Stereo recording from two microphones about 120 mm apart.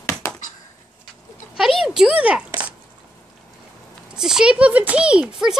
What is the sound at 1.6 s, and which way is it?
A child's voice, centre (ahead or behind).